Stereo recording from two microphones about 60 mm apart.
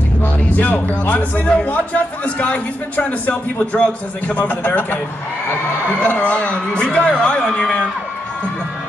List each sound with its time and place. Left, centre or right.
0.2 s speech: left
4.4 s speech: left
6.0 s speech: left